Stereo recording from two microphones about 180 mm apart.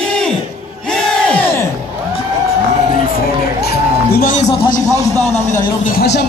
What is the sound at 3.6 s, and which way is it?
Music, 60° left (ahead or behind).